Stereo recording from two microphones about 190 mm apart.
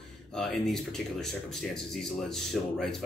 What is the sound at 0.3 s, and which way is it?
Speech, centre (ahead or behind).